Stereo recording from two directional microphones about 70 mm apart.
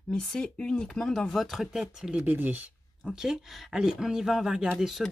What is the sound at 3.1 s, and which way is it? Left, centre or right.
Speech, centre.